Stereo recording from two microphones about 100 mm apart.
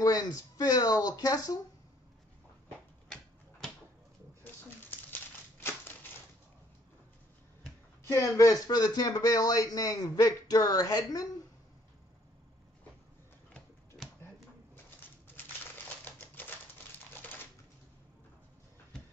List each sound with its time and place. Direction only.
0.0 s speech: 40° left (ahead or behind)
4.5 s a sound: 20° left (ahead or behind)
8.1 s speech: 30° left (ahead or behind)
15.0 s typewriter: 20° left (ahead or behind)